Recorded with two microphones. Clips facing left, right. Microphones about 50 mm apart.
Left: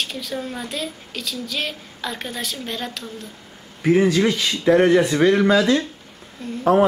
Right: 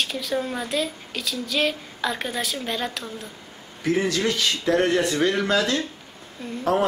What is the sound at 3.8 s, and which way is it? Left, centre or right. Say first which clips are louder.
Speech: left 6 dB; centre.